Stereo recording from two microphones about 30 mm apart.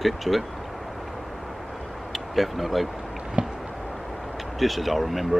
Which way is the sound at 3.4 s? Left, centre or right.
Right.